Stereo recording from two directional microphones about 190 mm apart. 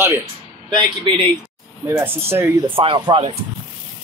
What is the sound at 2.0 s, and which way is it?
Speech, 10° right (ahead or behind).